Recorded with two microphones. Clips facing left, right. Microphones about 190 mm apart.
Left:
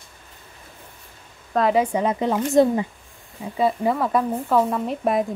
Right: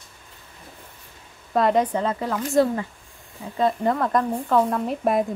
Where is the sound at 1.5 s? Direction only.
5° left (ahead or behind); by 2.8 s 20° left (ahead or behind).